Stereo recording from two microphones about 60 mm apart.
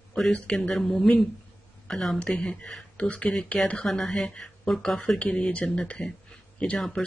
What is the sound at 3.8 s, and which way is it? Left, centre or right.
Speech, centre.